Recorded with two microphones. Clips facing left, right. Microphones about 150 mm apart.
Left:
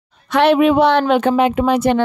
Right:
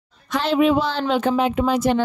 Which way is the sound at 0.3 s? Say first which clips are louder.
Left 5 dB; 65° left (ahead or behind).